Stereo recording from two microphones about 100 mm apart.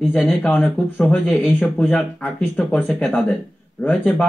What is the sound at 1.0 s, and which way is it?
Speech, 15° left (ahead or behind).